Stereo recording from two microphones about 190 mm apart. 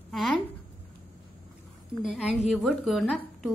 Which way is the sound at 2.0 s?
Centre (ahead or behind).